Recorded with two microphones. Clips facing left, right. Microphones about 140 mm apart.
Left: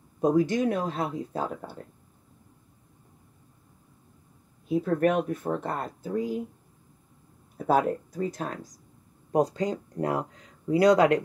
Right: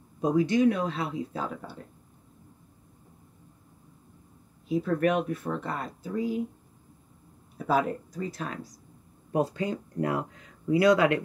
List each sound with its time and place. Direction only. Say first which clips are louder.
0.2 s speech: even; 45° left (ahead or behind)
4.6 s speech: left 1 dB; 50° left (ahead or behind)
7.5 s speech: left 2 dB; 55° left (ahead or behind)